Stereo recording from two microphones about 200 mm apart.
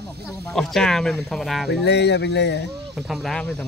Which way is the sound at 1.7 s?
60° left (ahead or behind).